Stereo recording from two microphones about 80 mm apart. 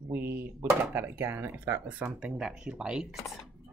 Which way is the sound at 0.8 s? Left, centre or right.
Right.